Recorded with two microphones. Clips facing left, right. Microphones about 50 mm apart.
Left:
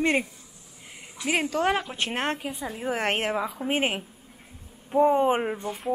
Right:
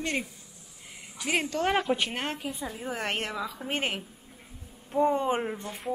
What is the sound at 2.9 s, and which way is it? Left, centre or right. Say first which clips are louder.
Speech: left 7 dB; left.